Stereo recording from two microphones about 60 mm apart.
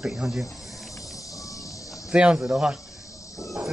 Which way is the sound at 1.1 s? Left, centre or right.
Left.